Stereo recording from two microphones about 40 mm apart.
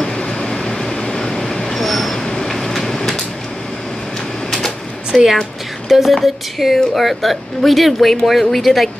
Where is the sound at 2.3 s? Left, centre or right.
Centre.